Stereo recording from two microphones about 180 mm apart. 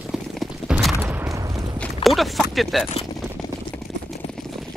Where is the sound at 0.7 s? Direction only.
Centre (ahead or behind).